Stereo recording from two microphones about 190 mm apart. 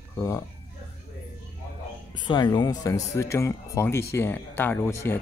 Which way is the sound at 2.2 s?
25° left (ahead or behind).